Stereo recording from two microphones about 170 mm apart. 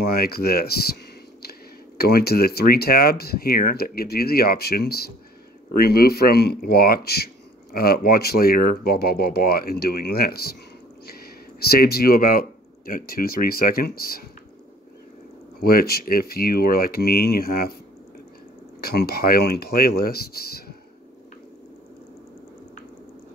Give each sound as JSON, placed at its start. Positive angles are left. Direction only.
{"t": 0.0, "sound": "speech", "side_deg": 65}
{"t": 15.6, "sound": "speech", "side_deg": 65}
{"t": 18.8, "sound": "speech", "side_deg": 65}